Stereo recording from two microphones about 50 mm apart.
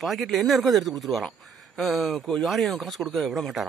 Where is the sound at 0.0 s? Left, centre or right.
Centre.